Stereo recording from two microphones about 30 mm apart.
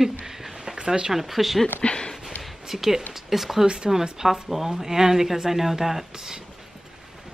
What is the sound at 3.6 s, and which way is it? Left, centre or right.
Speech, right.